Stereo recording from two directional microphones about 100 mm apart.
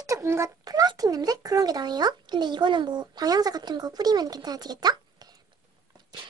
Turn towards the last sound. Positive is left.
turn(degrees=-40)  # may be behind; listen again after turning